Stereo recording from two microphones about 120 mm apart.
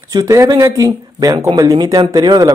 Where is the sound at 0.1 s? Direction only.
25° right (ahead or behind).